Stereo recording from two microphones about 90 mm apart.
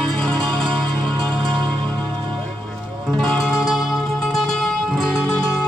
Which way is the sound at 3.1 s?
10° left (ahead or behind).